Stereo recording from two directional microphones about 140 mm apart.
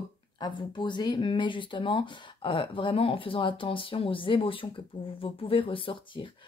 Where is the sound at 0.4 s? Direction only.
35° left (ahead or behind).